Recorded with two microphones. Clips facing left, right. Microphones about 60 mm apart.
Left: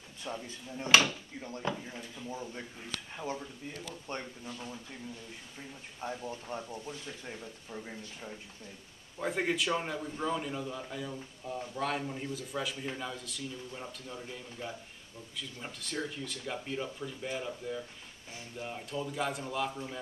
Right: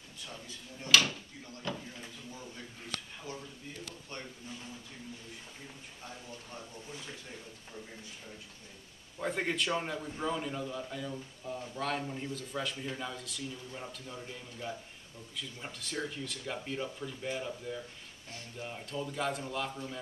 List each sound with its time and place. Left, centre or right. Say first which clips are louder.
0.2 s speech: left 7 dB; left
3.2 s speech: left 6 dB; left
5.9 s speech: left 10 dB; left
9.2 s a man's voice: left 1 dB; centre